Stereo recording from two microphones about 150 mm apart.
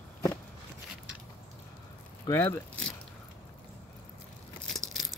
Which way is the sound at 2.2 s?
15° left (ahead or behind).